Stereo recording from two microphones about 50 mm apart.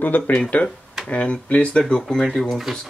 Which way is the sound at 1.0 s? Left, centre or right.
Left.